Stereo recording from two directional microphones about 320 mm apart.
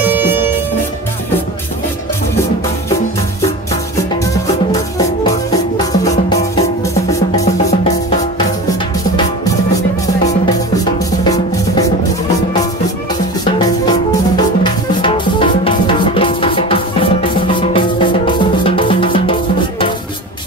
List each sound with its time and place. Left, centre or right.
0.0 s music: centre
4.7 s music: centre
11.1 s drum: centre
14.3 s music: centre